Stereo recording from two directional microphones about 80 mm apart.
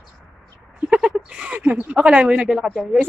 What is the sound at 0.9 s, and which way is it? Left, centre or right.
A woman's voice, centre.